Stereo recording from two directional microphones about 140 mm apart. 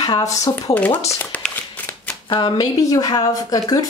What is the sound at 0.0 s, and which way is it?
Speech, 25° left (ahead or behind).